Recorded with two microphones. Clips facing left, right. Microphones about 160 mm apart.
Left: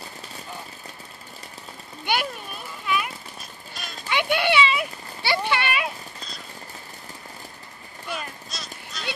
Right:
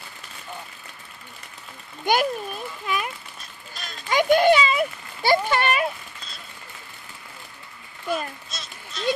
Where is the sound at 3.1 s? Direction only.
35° left (ahead or behind).